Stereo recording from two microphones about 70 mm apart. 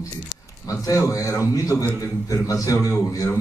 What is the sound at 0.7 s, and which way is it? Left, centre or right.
A man's voice, left.